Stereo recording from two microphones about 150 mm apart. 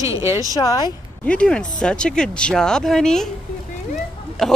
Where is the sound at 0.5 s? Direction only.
25° left (ahead or behind).